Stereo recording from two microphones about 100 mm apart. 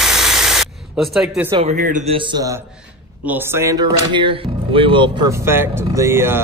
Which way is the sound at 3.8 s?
50° right (ahead or behind).